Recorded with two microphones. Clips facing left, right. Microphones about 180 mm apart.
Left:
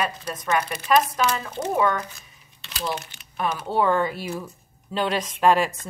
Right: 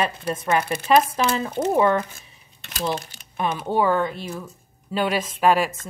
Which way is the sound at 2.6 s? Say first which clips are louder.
Right 4 dB; 45° right (ahead or behind).